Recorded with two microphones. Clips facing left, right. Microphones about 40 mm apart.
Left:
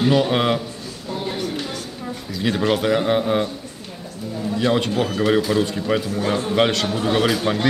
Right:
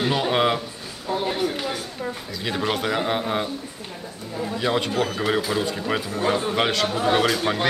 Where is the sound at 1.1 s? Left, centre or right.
Centre.